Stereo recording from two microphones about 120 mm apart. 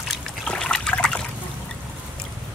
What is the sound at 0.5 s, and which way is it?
Trickle, 5° left (ahead or behind).